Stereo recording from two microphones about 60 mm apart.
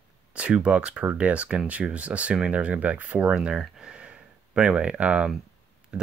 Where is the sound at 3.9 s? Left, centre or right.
Centre.